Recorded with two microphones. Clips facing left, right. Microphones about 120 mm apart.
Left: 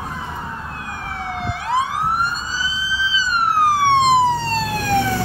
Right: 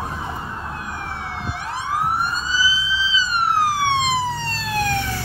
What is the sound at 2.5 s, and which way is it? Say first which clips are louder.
Emergency vehicle: right 2 dB; 50° left (ahead or behind).